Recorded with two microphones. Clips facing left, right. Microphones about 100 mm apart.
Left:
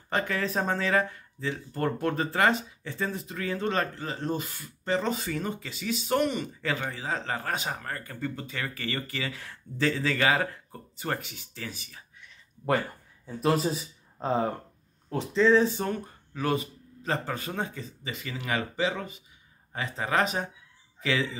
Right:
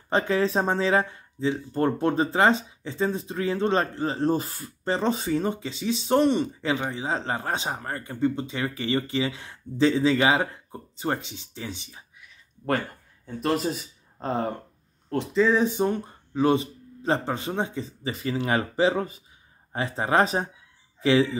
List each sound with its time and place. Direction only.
0.1 s speech: 25° right (ahead or behind)
12.2 s a sound: centre (ahead or behind)
13.3 s speech: centre (ahead or behind)
15.4 s speech: 15° right (ahead or behind); by 21.3 s 30° right (ahead or behind)